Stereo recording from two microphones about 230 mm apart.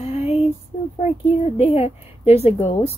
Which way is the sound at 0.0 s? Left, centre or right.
Left.